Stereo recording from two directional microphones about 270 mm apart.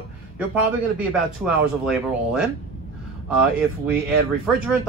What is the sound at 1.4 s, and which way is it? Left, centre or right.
Speech, centre.